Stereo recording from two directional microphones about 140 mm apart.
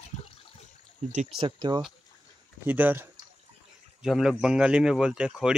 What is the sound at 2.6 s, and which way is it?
A man's voice, 10° right (ahead or behind).